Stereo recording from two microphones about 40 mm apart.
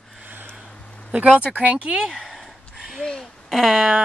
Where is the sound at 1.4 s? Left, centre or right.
Right.